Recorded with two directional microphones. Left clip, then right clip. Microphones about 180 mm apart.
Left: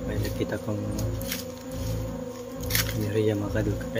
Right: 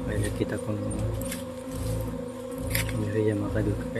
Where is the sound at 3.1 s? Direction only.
5° left (ahead or behind).